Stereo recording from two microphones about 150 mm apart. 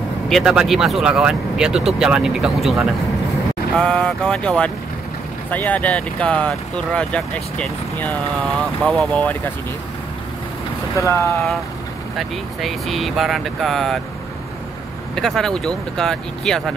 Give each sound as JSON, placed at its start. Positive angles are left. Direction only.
{"t": 0.3, "sound": "speech", "side_deg": -5}
{"t": 11.0, "sound": "speech", "side_deg": 20}
{"t": 12.2, "sound": "speech", "side_deg": 0}
{"t": 15.1, "sound": "speech", "side_deg": 5}